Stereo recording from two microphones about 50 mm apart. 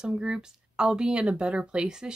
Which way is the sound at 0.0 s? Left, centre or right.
Centre.